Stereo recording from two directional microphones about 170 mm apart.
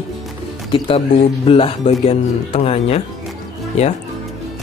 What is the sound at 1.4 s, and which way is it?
Speech, 35° left (ahead or behind).